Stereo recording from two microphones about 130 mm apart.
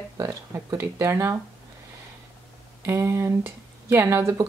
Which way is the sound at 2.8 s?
20° right (ahead or behind).